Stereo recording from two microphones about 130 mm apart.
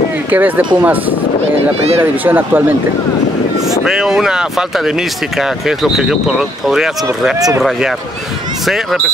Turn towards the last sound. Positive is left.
turn(degrees=0)  # may be behind; listen again after turning